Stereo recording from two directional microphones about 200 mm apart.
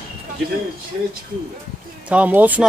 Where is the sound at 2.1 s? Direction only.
5° right (ahead or behind).